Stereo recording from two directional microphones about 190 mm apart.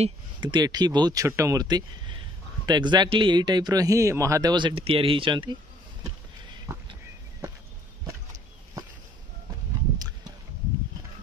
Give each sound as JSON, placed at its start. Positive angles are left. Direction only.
{"t": 0.0, "sound": "speech", "side_deg": -25}